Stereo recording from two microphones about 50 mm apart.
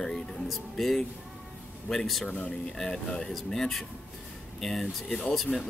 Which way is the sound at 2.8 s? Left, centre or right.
Centre.